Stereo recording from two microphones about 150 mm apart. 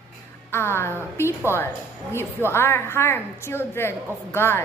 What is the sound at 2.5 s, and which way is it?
A woman's voice, 15° left (ahead or behind).